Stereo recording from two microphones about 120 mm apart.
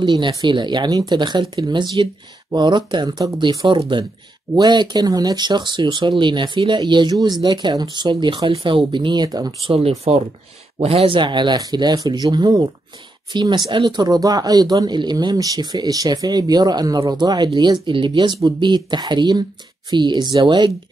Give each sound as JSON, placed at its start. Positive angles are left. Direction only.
{"t": 0.0, "sound": "speech", "side_deg": -40}
{"t": 9.8, "sound": "speech", "side_deg": -55}